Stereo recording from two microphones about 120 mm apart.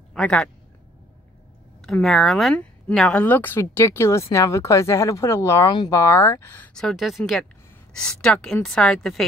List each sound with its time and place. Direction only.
0.1 s a man's voice: 5° left (ahead or behind)
1.9 s speech: 5° left (ahead or behind); by 5.7 s 20° left (ahead or behind)
5.7 s speech: 35° left (ahead or behind)
5.9 s speech: 20° left (ahead or behind)
6.7 s speech: 5° left (ahead or behind)